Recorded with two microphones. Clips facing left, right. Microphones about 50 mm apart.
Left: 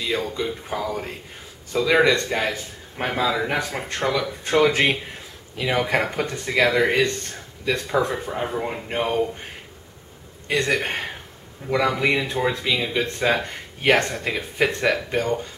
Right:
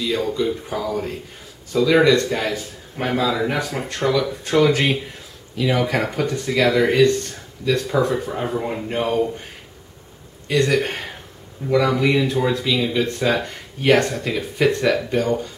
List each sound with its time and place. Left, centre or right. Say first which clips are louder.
0.0 s speech: right 4 dB; centre
10.5 s speech: right 3 dB; centre